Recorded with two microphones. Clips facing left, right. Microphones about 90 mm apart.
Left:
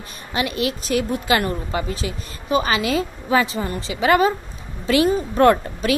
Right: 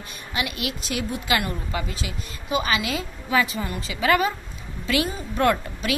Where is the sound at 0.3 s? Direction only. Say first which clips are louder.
Left 6 dB; 35° left (ahead or behind).